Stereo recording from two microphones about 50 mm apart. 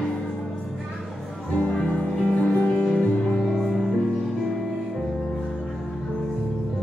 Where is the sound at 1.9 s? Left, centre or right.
Centre.